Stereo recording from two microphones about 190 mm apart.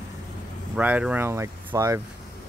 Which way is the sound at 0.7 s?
5° right (ahead or behind).